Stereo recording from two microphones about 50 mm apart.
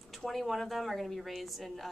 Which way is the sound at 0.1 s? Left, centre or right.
Centre.